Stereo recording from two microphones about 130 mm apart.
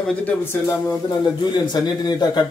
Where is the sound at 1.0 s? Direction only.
35° left (ahead or behind).